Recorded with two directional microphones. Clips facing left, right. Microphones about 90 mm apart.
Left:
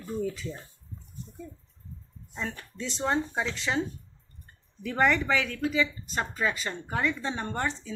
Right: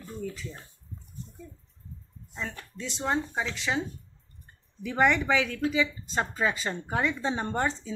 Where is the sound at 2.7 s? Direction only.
Centre (ahead or behind).